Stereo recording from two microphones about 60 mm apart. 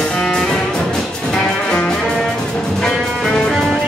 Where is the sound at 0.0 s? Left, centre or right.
Centre.